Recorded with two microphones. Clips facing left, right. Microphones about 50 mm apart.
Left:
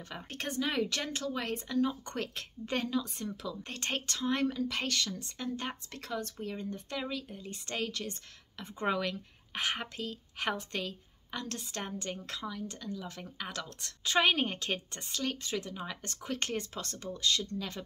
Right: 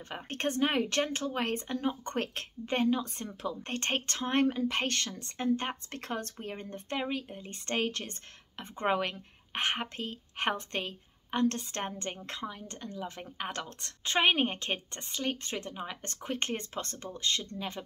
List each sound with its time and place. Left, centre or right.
0.3 s speech: right
2.7 s speech: right
3.0 s a woman's voice: right